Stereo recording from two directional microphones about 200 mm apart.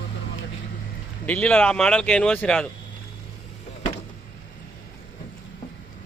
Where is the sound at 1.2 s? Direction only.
5° left (ahead or behind).